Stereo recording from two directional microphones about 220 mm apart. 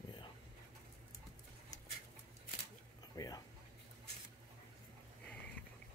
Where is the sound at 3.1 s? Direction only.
15° left (ahead or behind).